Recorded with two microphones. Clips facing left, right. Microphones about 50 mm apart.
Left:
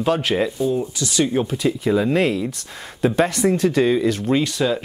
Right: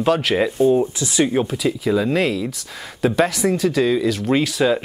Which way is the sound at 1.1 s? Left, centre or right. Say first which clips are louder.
Right 1 dB; centre.